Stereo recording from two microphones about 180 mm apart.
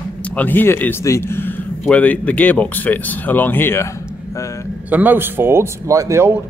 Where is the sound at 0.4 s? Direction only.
10° left (ahead or behind).